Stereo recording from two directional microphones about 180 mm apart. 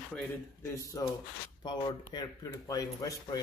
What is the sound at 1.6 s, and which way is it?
Speech, 25° left (ahead or behind).